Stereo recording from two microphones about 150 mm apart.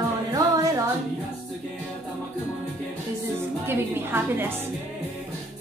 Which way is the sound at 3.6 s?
15° right (ahead or behind).